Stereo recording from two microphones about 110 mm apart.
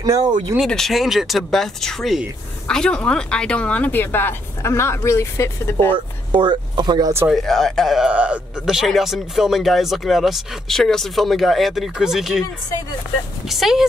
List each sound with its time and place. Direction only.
0.0 s speech: 35° right (ahead or behind)
0.7 s speech: 5° left (ahead or behind); by 5.9 s 25° left (ahead or behind)
6.3 s speech: 45° right (ahead or behind)
7.2 s speech: centre (ahead or behind)
13.5 s speech: centre (ahead or behind)